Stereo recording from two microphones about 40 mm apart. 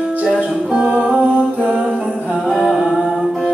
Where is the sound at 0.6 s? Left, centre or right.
Right.